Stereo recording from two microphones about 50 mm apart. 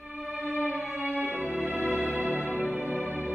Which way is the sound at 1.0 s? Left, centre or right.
Right.